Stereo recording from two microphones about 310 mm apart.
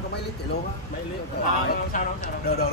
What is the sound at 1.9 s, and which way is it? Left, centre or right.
Speech, left.